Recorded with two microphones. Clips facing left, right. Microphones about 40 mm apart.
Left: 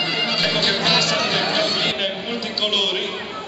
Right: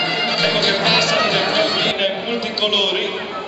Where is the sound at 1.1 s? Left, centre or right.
Centre.